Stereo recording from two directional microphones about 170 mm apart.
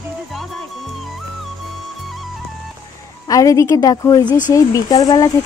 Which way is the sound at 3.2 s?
20° left (ahead or behind).